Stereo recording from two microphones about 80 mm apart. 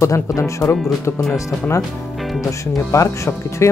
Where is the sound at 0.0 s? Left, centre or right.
Left.